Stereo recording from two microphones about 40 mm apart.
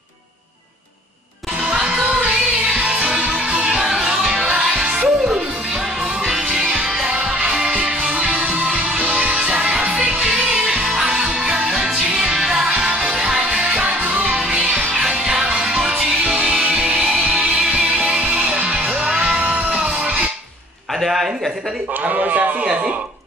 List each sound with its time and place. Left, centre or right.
2.7 s music: right
6.5 s music: centre
7.6 s music: right
17.2 s music: right
18.1 s music: right
21.0 s a sound: centre
22.0 s a sound: right